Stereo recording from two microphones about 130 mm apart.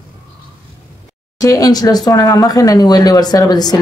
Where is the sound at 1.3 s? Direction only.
25° left (ahead or behind).